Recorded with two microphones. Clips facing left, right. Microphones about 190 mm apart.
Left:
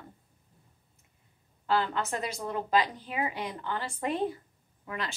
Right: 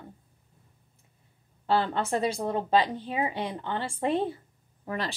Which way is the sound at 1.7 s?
30° right (ahead or behind).